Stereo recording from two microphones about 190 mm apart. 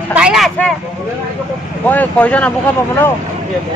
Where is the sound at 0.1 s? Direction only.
5° right (ahead or behind).